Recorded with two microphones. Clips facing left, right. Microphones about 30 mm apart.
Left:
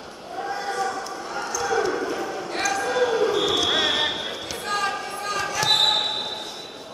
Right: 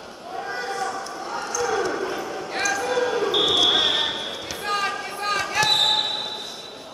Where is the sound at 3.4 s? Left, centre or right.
Centre.